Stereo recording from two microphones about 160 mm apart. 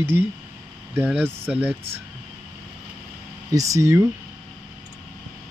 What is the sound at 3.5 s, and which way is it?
Speech, 20° right (ahead or behind).